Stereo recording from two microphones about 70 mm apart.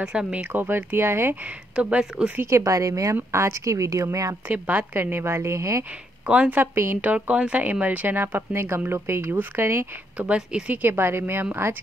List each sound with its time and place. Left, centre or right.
0.0 s speech: centre; by 1.3 s right
1.4 s speech: centre
2.5 s speech: right
3.3 s speech: right
4.5 s a woman's voice: right
6.2 s speech: centre
6.7 s a woman's voice: right
7.0 s speech: right
10.1 s speech: centre
10.8 s a woman's voice: right